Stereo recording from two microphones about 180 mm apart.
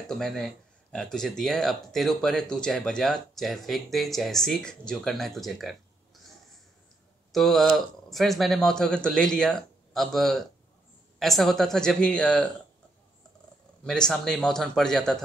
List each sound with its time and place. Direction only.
0.0 s speech: centre (ahead or behind)
7.3 s speech: centre (ahead or behind)
13.8 s speech: 5° left (ahead or behind)